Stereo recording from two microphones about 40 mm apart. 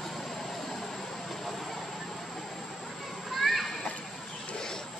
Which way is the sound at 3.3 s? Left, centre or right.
Centre.